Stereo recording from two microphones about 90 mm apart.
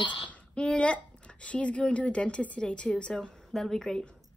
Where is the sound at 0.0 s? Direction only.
65° left (ahead or behind).